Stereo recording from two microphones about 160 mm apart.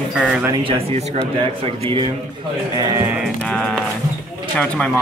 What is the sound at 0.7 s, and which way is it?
Speech, 40° right (ahead or behind).